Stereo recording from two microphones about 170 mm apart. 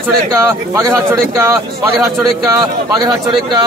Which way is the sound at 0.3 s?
15° right (ahead or behind).